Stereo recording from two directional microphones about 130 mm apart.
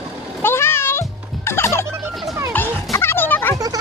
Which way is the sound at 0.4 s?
20° left (ahead or behind).